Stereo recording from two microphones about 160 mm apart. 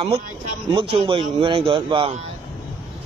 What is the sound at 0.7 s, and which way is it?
A man's voice, 35° right (ahead or behind).